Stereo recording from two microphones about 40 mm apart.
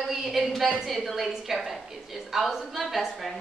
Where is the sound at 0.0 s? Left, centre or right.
Centre.